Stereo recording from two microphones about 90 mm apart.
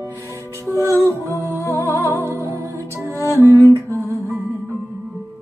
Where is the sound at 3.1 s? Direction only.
35° left (ahead or behind).